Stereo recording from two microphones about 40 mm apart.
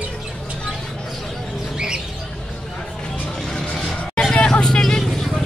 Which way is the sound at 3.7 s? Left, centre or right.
Centre.